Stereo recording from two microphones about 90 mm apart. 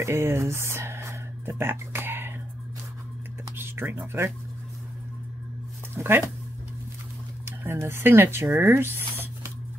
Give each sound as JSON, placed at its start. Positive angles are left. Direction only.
{"t": 0.0, "sound": "speech", "side_deg": -30}
{"t": 3.5, "sound": "a sound", "side_deg": -25}
{"t": 5.9, "sound": "speech", "side_deg": -25}
{"t": 7.4, "sound": "speech", "side_deg": -25}